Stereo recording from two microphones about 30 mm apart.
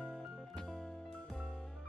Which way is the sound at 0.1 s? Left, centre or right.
Centre.